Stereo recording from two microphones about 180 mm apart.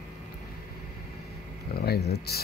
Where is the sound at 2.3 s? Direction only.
60° left (ahead or behind).